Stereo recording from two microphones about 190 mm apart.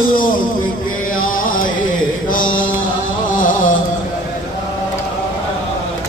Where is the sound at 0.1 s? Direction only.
45° left (ahead or behind).